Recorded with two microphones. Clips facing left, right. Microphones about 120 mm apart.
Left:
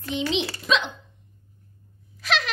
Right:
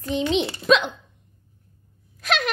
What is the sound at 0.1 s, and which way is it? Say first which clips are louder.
Speech: right 3 dB; 40° right (ahead or behind).